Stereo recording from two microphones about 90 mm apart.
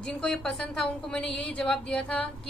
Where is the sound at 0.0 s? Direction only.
10° left (ahead or behind).